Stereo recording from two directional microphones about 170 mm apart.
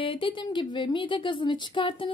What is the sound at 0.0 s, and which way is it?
Speech, 30° left (ahead or behind).